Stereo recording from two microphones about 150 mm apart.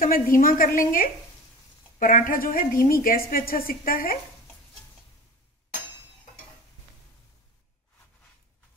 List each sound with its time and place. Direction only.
0.0 s a woman's voice: 70° left (ahead or behind)